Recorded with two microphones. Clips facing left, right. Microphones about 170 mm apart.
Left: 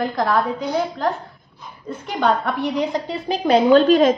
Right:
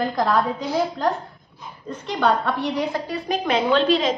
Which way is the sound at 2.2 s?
15° left (ahead or behind).